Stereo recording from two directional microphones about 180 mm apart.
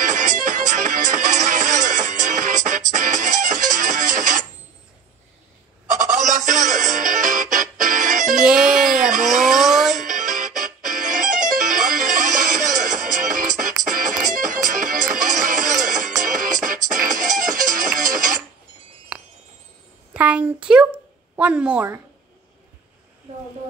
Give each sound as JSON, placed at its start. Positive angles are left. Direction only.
{"t": 0.1, "sound": "music", "side_deg": -45}
{"t": 5.9, "sound": "music", "side_deg": -45}
{"t": 8.4, "sound": "music", "side_deg": -5}
{"t": 9.1, "sound": "a sound", "side_deg": -45}
{"t": 9.5, "sound": "music", "side_deg": 0}
{"t": 10.0, "sound": "music", "side_deg": -45}
{"t": 20.2, "sound": "a sound", "side_deg": -10}